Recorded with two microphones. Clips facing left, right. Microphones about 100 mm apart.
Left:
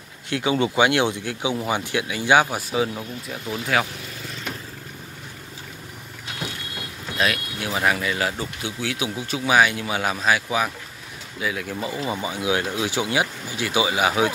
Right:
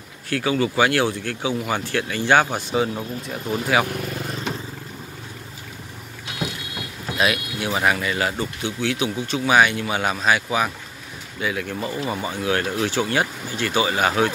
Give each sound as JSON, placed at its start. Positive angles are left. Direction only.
{"t": 0.3, "sound": "speech", "side_deg": 20}
{"t": 3.9, "sound": "vehicle", "side_deg": -55}
{"t": 7.2, "sound": "speech", "side_deg": -5}